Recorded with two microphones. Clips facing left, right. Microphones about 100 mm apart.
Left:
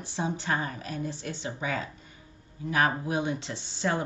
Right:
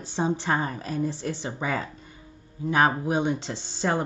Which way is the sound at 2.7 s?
25° right (ahead or behind).